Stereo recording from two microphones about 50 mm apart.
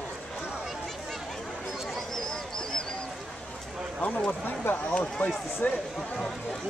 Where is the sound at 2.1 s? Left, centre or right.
Centre.